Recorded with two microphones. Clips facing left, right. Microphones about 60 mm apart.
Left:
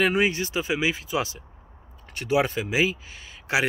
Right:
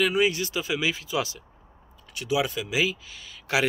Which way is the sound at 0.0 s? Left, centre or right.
Left.